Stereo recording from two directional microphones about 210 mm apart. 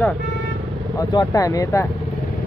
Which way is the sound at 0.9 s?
15° left (ahead or behind).